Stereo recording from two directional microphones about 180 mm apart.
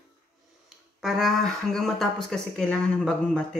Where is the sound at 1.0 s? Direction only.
Centre (ahead or behind).